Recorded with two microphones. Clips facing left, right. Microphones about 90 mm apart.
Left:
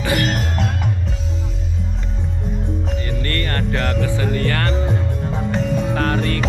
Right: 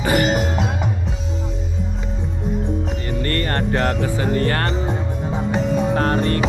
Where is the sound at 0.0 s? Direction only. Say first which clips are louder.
Right 2 dB; 35° right (ahead or behind).